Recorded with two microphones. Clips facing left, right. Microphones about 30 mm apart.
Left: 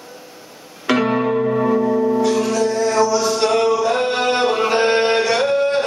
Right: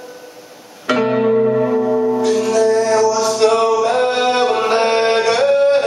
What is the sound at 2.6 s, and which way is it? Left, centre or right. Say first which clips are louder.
Mantra: right 4 dB; right.